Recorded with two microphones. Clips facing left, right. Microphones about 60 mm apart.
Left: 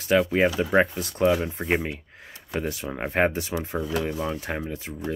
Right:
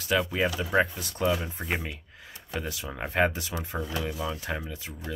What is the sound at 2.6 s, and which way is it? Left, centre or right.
Speech, left.